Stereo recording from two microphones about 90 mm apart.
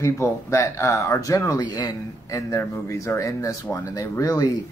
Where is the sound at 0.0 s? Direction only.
30° left (ahead or behind).